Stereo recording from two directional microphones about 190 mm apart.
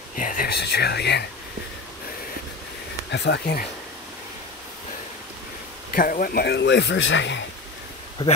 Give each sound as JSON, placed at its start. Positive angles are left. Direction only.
{"t": 0.1, "sound": "speech", "side_deg": 45}
{"t": 3.1, "sound": "a man's voice", "side_deg": 60}
{"t": 5.9, "sound": "a man's voice", "side_deg": 50}